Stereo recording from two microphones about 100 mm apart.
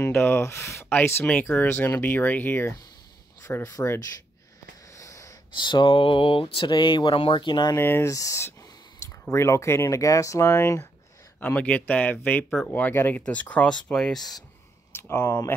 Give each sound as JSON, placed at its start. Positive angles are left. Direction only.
{"t": 0.0, "sound": "speech", "side_deg": 25}
{"t": 4.9, "sound": "wheeze", "side_deg": 30}
{"t": 5.6, "sound": "speech", "side_deg": 50}
{"t": 6.7, "sound": "speech", "side_deg": 45}
{"t": 7.7, "sound": "speech", "side_deg": 25}
{"t": 11.3, "sound": "speech", "side_deg": 15}
{"t": 14.9, "sound": "a sound", "side_deg": 25}